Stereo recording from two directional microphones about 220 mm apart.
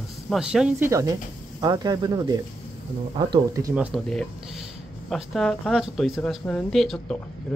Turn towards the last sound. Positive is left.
turn(degrees=0)  # may be behind; listen again after turning